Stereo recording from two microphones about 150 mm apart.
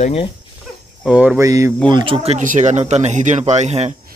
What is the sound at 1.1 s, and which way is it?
Speech, 5° right (ahead or behind).